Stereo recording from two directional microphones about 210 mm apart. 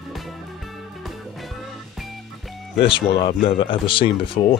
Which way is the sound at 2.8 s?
25° left (ahead or behind).